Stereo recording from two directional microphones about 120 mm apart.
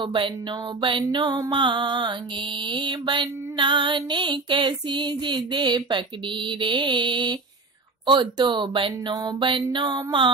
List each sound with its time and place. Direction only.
0.0 s music: 45° right (ahead or behind)
1.1 s mantra: 40° right (ahead or behind)